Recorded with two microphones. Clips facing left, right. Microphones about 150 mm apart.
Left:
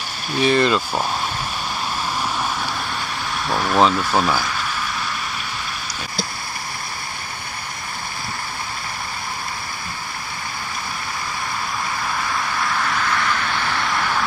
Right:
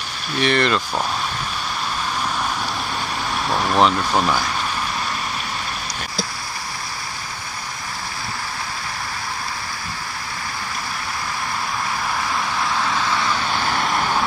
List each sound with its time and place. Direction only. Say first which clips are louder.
0.4 s speech: left 2 dB; 10° left (ahead or behind)
3.4 s speech: left 1 dB; centre (ahead or behind)
12.8 s vehicle: right 1 dB; 15° right (ahead or behind)